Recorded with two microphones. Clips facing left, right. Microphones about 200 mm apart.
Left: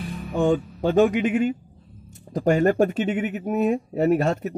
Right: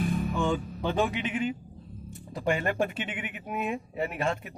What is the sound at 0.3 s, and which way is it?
Speech, 45° left (ahead or behind).